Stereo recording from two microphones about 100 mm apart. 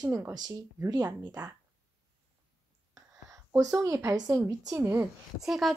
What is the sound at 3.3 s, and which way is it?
A woman's voice, 35° right (ahead or behind).